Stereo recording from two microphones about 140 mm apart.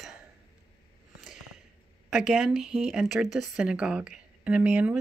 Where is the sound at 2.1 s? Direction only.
5° right (ahead or behind).